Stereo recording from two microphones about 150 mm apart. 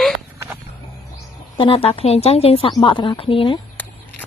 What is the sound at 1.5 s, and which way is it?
A woman's voice, 35° left (ahead or behind).